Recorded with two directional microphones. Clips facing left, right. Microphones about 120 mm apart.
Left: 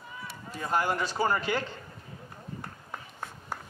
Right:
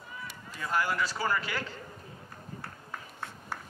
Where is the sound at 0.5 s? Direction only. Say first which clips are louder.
Left 2 dB; 30° left (ahead or behind).